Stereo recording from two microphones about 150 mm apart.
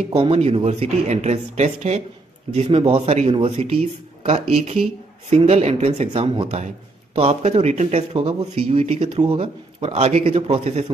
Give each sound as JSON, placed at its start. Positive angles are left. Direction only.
{"t": 0.1, "sound": "speech", "side_deg": -40}